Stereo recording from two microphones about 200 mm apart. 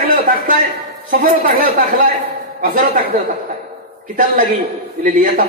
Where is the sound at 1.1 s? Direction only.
45° right (ahead or behind).